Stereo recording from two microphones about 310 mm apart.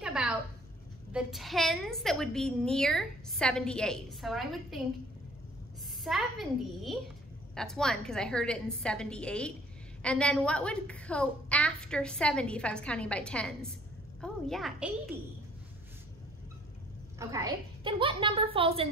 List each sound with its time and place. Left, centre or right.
0.0 s a sound: centre
1.1 s a woman's voice: centre
6.0 s a woman's voice: centre
17.2 s a woman's voice: centre